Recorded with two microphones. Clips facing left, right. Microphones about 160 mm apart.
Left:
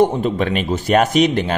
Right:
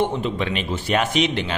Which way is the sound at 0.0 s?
45° left (ahead or behind).